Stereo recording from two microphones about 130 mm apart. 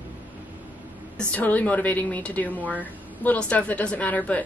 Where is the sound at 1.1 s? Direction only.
10° left (ahead or behind).